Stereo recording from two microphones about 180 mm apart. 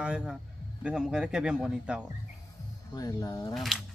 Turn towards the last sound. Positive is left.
turn(degrees=0)  # may be behind; listen again after turning